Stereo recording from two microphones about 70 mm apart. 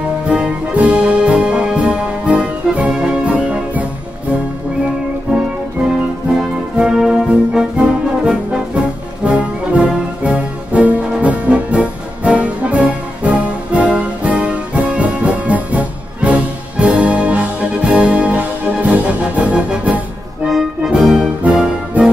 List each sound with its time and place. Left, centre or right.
0.3 s brass instrument: centre
5.8 s music: centre
20.4 s music: centre